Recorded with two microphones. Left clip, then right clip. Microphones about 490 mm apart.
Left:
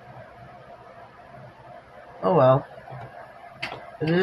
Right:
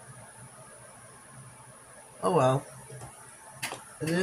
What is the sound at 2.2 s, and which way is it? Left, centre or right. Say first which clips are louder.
Speech: left 7 dB; right.